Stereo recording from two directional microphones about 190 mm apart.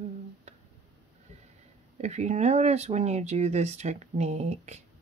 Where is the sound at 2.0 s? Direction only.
35° right (ahead or behind).